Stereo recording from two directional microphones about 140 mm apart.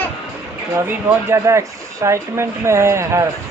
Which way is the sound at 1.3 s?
20° right (ahead or behind).